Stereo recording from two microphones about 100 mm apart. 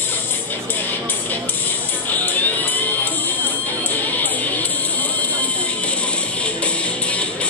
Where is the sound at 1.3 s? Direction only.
20° left (ahead or behind).